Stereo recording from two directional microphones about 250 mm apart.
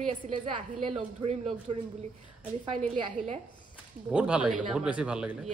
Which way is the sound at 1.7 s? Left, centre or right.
Right.